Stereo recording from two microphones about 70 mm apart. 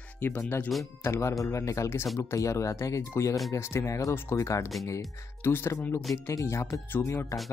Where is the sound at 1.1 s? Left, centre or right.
Left.